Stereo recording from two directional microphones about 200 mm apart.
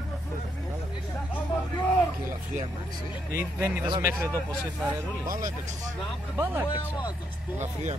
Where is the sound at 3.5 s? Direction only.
5° right (ahead or behind).